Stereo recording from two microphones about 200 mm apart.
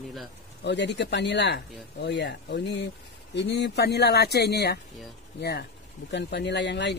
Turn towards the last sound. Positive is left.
turn(degrees=60)  # may be behind; listen again after turning